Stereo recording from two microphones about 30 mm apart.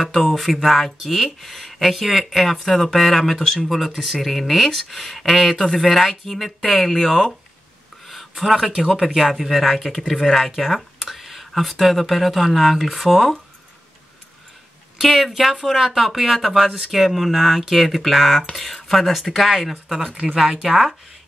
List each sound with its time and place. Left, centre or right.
0.1 s speech: centre
8.1 s a sound: centre
8.6 s speech: centre
9.0 s speech: centre
10.6 s a sound: centre
11.7 s speech: centre
15.0 s speech: centre
15.8 s speech: centre
19.5 s speech: centre